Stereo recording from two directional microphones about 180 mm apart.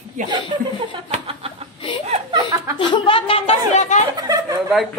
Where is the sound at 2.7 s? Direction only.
30° left (ahead or behind).